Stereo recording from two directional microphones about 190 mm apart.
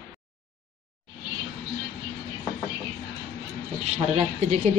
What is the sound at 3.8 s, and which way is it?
Speech, 35° right (ahead or behind).